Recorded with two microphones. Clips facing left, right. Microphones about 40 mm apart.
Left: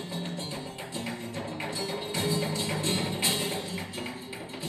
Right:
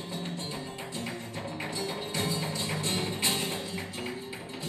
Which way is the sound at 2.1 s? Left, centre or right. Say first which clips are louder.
Left 3 dB; centre.